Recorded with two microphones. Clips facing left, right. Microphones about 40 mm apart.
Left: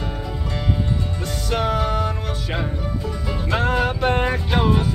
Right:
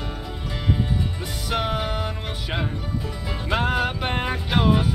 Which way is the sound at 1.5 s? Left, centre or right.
Centre.